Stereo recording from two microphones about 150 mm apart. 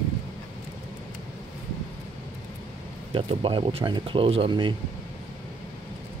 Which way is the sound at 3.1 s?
35° right (ahead or behind).